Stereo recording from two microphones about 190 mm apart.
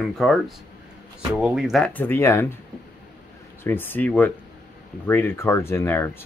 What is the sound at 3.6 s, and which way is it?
Speech, 10° left (ahead or behind).